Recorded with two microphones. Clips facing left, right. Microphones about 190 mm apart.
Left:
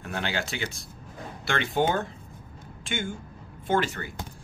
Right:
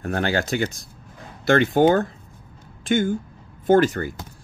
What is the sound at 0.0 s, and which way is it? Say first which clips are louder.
Speech: right 8 dB; 45° right (ahead or behind).